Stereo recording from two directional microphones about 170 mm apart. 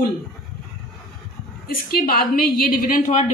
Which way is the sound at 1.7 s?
60° left (ahead or behind).